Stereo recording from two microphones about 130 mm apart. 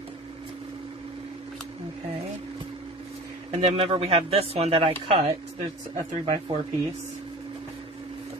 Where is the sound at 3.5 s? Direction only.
50° right (ahead or behind).